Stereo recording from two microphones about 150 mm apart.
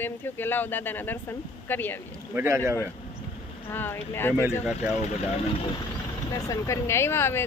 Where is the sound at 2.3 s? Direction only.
15° right (ahead or behind).